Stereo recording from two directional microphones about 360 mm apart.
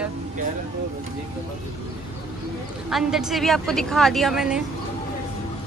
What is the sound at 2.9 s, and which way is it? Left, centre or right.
A woman's voice, centre.